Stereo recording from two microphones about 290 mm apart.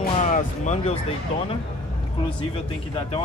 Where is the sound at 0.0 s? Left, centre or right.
Left.